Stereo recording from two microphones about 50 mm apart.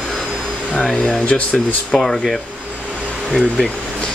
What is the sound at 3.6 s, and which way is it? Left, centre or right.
Air conditioning, centre.